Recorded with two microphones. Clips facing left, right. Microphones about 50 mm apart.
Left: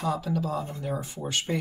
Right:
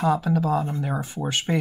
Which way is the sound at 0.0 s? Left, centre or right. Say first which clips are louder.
Right 6 dB; right.